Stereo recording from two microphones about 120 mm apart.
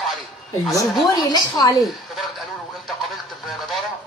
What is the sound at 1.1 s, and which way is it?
Speech, 30° left (ahead or behind).